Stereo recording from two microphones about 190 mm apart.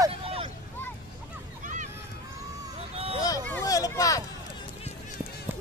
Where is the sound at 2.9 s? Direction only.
30° right (ahead or behind).